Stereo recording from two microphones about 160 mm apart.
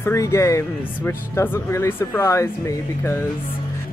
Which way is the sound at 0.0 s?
20° left (ahead or behind).